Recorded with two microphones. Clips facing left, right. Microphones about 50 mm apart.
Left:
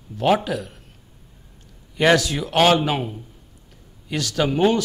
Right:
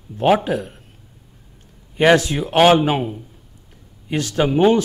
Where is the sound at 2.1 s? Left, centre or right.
Right.